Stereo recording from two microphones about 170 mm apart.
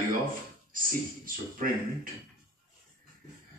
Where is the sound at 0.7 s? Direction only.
55° right (ahead or behind).